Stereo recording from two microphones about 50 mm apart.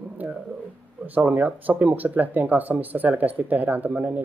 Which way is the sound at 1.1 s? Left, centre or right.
Right.